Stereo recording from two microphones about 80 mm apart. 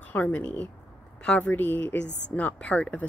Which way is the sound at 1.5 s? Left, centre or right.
Left.